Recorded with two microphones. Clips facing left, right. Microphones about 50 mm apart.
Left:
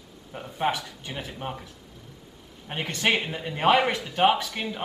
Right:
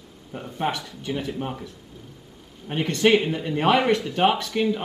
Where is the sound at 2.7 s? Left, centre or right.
Centre.